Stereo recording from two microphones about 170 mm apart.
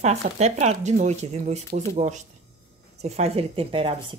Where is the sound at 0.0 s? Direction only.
40° right (ahead or behind).